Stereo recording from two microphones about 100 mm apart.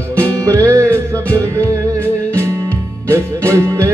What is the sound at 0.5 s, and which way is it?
Music, 30° right (ahead or behind).